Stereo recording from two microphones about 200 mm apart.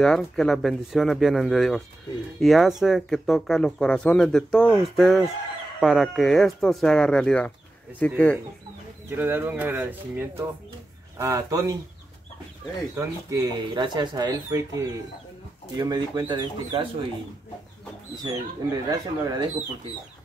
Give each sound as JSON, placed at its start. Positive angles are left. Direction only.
{"t": 0.0, "sound": "speech", "side_deg": 5}
{"t": 9.1, "sound": "speech", "side_deg": -10}
{"t": 12.9, "sound": "speech", "side_deg": -15}
{"t": 18.1, "sound": "speech", "side_deg": -20}